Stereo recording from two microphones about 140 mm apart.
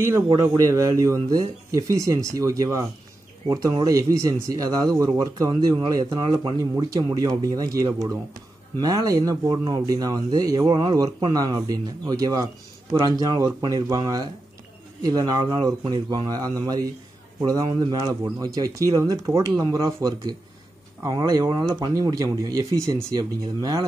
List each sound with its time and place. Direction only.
0.0 s a man's voice: 20° right (ahead or behind)